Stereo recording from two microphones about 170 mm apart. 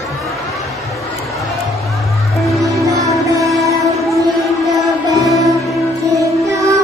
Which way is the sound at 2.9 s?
20° right (ahead or behind).